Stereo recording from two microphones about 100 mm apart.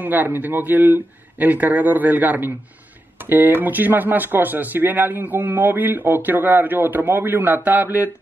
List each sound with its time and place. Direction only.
0.0 s speech: 20° right (ahead or behind)